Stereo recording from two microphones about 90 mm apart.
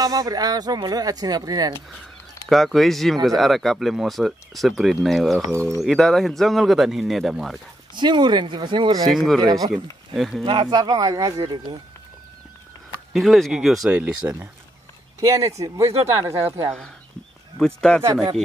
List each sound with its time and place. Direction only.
0.0 s speech: 45° right (ahead or behind)
2.5 s speech: centre (ahead or behind)
5.4 s speech: 35° right (ahead or behind)
5.8 s speech: centre (ahead or behind)
7.9 s speech: 55° right (ahead or behind)
9.0 s speech: centre (ahead or behind)
9.4 s speech: 50° right (ahead or behind)
10.1 s speech: centre (ahead or behind)
10.4 s speech: 90° right
10.7 s speech: 45° right (ahead or behind)
13.1 s speech: centre (ahead or behind)
13.8 s speech: 15° right (ahead or behind)
15.1 s speech: 35° right (ahead or behind)
17.6 s speech: 5° left (ahead or behind)